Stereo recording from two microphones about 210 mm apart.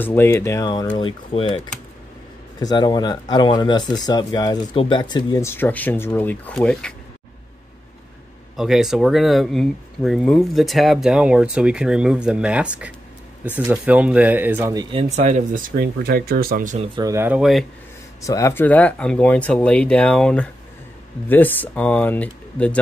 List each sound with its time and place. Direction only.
0.0 s speech: 10° left (ahead or behind)
2.6 s speech: 20° left (ahead or behind); by 6.9 s 5° left (ahead or behind)
8.5 s speech: centre (ahead or behind); by 17.0 s 30° right (ahead or behind)
17.0 s speech: 15° right (ahead or behind)
18.2 s speech: 15° left (ahead or behind)